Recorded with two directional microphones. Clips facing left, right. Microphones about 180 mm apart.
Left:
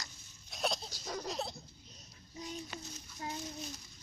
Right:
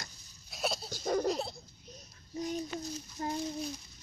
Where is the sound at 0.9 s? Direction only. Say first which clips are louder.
Right 11 dB; 50° right (ahead or behind).